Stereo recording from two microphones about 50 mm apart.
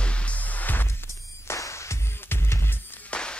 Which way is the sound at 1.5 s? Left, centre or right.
Left.